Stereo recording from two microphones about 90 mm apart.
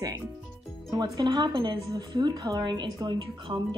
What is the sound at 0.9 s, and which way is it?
Speech, 55° right (ahead or behind).